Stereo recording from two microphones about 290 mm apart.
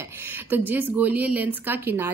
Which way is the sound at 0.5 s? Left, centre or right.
Centre.